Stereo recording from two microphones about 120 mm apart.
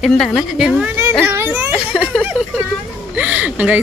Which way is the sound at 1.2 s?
15° right (ahead or behind).